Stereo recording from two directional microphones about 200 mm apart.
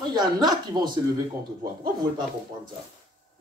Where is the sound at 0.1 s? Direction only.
20° right (ahead or behind).